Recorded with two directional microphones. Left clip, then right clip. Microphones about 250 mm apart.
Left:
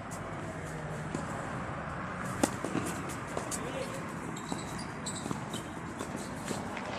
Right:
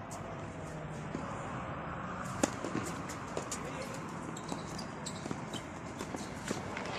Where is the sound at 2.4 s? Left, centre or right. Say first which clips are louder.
Left 2 dB; centre.